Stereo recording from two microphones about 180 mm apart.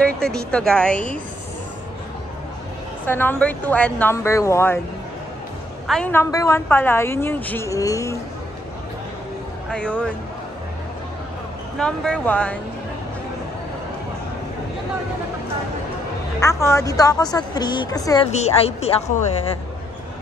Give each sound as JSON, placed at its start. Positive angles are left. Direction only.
{"t": 0.0, "sound": "a woman's voice", "side_deg": 5}
{"t": 3.1, "sound": "a woman's voice", "side_deg": 10}
{"t": 5.9, "sound": "a woman's voice", "side_deg": 5}
{"t": 9.7, "sound": "speech", "side_deg": 5}
{"t": 11.8, "sound": "speech", "side_deg": 5}
{"t": 16.3, "sound": "a woman's voice", "side_deg": 15}
{"t": 18.3, "sound": "speech", "side_deg": 35}